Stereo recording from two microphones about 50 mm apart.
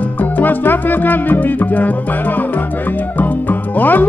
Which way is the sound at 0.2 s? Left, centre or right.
Left.